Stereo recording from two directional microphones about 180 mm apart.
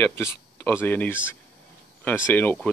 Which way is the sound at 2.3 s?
10° left (ahead or behind).